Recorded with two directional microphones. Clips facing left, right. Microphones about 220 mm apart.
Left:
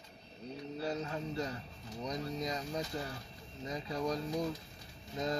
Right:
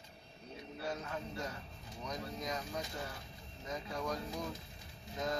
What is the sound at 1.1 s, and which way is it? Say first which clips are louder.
Speech: left 4 dB; 35° left (ahead or behind).